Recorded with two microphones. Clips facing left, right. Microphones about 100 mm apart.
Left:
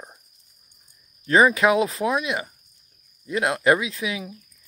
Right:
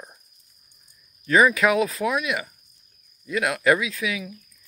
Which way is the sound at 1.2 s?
25° left (ahead or behind).